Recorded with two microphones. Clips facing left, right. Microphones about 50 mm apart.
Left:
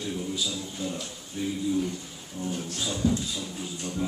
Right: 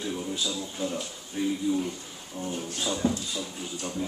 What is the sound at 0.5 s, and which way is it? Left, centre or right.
Speech, right.